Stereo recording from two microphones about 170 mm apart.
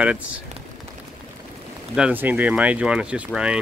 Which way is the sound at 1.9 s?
10° right (ahead or behind).